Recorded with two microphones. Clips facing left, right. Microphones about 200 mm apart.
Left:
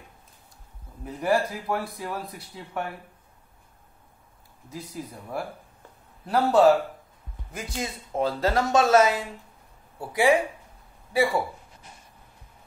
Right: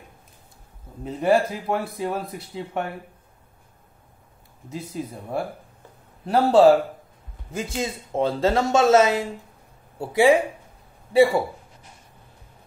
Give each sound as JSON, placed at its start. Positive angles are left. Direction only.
{"t": 1.0, "sound": "speech", "side_deg": -25}
{"t": 4.6, "sound": "speech", "side_deg": -25}